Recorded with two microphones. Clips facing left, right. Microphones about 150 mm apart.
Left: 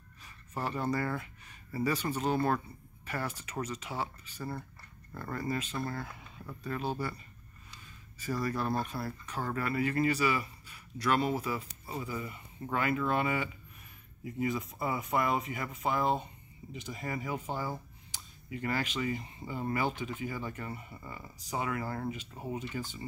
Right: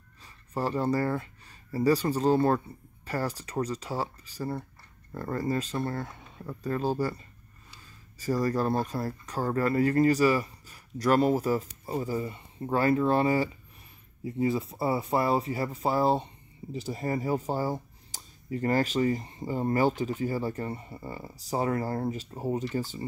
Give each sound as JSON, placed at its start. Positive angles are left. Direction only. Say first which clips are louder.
{"t": 0.6, "sound": "speech", "louder": "right 6 dB", "side_deg": -35}
{"t": 8.2, "sound": "speech", "louder": "right 6 dB", "side_deg": -40}